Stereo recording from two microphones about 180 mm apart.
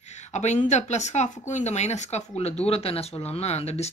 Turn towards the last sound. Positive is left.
turn(degrees=35)  # may be behind; listen again after turning